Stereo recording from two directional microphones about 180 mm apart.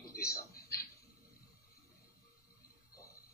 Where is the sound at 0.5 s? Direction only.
55° left (ahead or behind).